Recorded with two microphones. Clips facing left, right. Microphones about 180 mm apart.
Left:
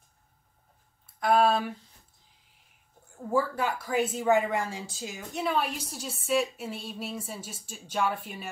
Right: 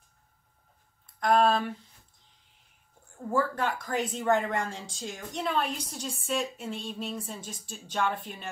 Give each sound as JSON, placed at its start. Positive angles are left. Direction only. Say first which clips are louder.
{"t": 1.0, "sound": "speech", "louder": "even", "side_deg": 5}
{"t": 3.3, "sound": "speech", "louder": "left 1 dB", "side_deg": 5}